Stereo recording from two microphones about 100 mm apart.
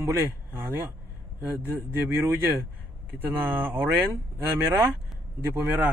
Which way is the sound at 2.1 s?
20° right (ahead or behind).